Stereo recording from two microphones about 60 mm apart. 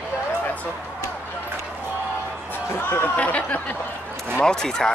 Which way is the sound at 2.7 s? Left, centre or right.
Left.